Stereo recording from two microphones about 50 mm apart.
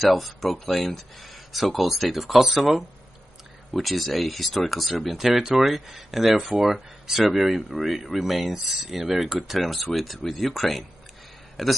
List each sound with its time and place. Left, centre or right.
0.0 s speech: centre